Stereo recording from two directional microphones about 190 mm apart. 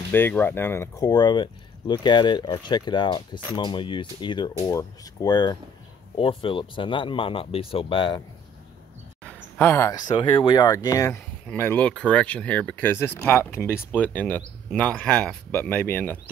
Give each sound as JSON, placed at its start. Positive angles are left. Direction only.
{"t": 0.1, "sound": "speech", "side_deg": 10}
{"t": 9.2, "sound": "speech", "side_deg": 10}